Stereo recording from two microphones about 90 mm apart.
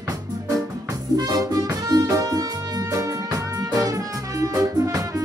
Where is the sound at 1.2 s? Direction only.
45° right (ahead or behind).